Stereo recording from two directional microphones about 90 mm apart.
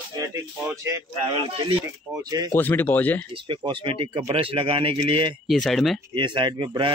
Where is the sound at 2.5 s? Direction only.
25° left (ahead or behind).